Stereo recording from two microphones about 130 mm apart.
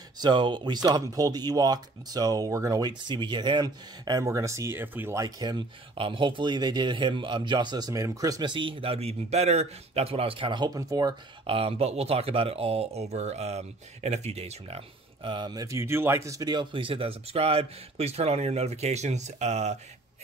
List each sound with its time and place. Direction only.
0.2 s speech: 35° right (ahead or behind)
3.1 s speech: 35° right (ahead or behind); by 5.2 s 15° right (ahead or behind)
5.2 s speech: 30° right (ahead or behind)
11.4 s speech: 45° right (ahead or behind)
15.2 s speech: 35° right (ahead or behind); by 19.8 s 60° right (ahead or behind)